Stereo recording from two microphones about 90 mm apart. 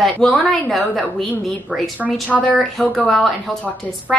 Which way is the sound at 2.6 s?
5° left (ahead or behind).